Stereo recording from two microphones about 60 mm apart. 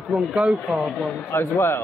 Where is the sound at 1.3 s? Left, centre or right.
Left.